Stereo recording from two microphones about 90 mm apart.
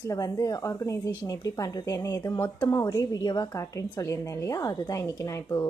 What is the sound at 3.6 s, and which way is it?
A woman's voice, 35° left (ahead or behind).